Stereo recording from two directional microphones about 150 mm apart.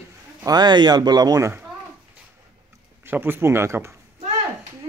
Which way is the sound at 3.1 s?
15° right (ahead or behind).